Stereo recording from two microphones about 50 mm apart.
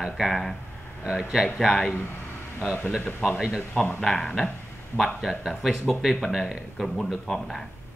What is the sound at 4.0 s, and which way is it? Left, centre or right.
Speech, centre.